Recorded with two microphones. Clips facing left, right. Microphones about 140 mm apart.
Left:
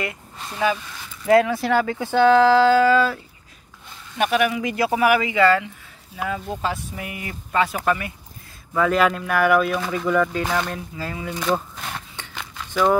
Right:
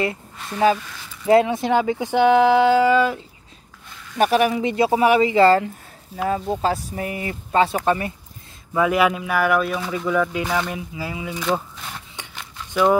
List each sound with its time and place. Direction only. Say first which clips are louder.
0.0 s speech: right 5 dB; 30° right (ahead or behind)
4.2 s speech: right 3 dB; 35° right (ahead or behind)
8.7 s speech: right 1 dB; 10° right (ahead or behind)
11.7 s a sound: left 3 dB; 65° left (ahead or behind)